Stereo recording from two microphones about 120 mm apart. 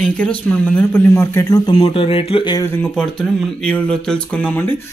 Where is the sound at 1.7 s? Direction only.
50° left (ahead or behind).